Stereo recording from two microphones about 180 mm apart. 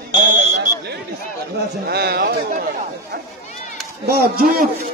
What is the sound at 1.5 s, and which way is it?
Chatter, 65° right (ahead or behind).